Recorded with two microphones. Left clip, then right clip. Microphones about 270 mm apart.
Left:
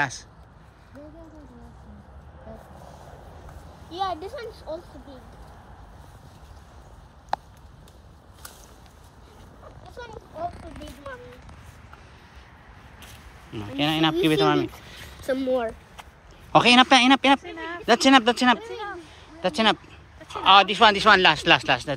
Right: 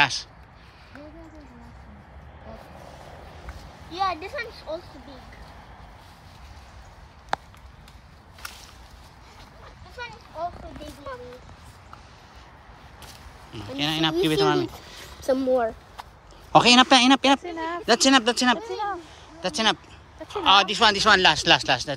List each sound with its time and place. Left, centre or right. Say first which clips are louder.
3.9 s speech: right 2 dB; centre
13.5 s speech: left 2 dB; centre
17.4 s speech: right 4 dB; right
17.8 s speech: left 2 dB; centre